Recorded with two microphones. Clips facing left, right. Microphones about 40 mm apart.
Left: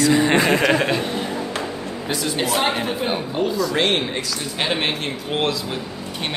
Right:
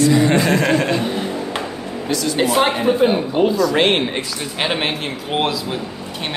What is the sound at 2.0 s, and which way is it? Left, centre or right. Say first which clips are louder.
Speech: right 4 dB; left.